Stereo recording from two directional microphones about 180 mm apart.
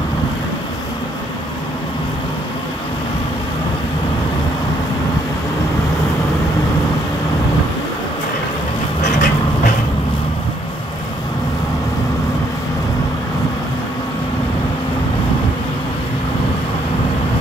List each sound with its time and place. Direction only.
9.0 s vehicle: 45° left (ahead or behind)